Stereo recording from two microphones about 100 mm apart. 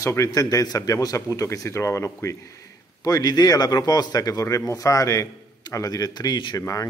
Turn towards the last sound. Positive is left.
turn(degrees=35)  # may be behind; listen again after turning